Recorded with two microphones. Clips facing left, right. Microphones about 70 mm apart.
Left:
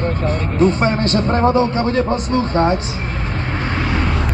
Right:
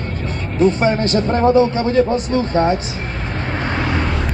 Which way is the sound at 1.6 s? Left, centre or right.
Left.